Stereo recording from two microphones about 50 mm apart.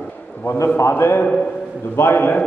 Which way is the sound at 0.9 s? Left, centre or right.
Left.